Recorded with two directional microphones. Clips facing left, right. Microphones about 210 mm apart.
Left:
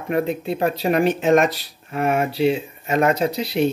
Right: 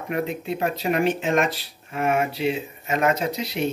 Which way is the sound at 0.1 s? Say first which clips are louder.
Left 5 dB; 35° left (ahead or behind).